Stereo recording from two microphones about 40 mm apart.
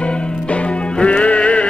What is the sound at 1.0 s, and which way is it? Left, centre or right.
Music, left.